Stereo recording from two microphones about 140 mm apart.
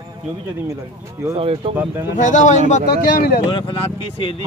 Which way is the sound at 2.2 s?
65° left (ahead or behind).